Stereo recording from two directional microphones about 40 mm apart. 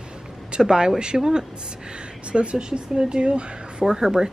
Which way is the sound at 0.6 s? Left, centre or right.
Centre.